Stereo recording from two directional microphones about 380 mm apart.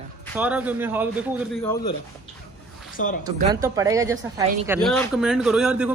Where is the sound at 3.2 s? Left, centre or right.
Centre.